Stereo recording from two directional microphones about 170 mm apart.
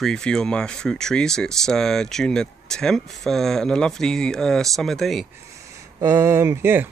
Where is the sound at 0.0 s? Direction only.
5° left (ahead or behind).